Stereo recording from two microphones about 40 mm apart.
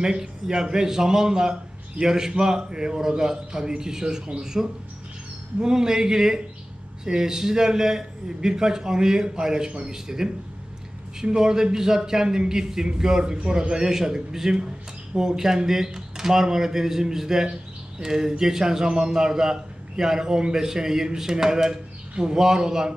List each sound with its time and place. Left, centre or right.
0.0 s a man's voice: centre